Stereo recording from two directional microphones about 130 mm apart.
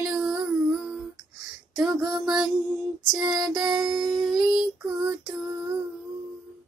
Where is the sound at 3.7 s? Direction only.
35° right (ahead or behind).